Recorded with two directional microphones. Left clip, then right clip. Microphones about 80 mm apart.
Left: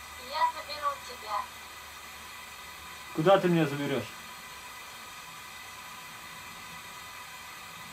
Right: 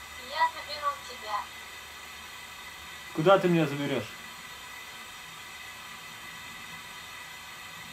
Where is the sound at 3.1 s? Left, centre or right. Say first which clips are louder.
Right 1 dB; centre.